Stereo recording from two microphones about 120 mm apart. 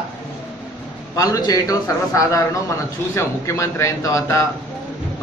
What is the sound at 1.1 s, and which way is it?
A man's voice, 30° left (ahead or behind).